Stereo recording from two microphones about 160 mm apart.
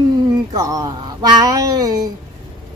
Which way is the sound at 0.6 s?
25° right (ahead or behind).